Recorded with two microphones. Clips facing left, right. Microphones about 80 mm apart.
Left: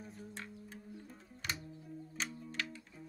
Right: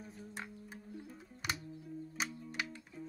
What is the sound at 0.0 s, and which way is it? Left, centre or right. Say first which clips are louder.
Music: even; centre.